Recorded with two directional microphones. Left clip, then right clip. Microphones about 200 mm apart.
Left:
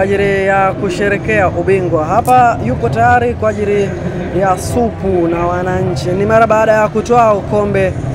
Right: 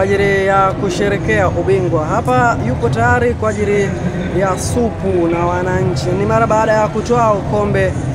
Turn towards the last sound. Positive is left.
turn(degrees=15)  # may be behind; listen again after turning